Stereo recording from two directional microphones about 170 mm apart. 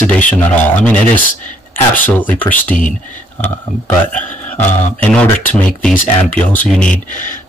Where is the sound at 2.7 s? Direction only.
5° left (ahead or behind).